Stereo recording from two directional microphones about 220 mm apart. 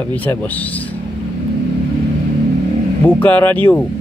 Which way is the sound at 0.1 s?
5° left (ahead or behind).